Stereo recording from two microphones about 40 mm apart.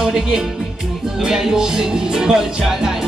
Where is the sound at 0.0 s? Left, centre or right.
Centre.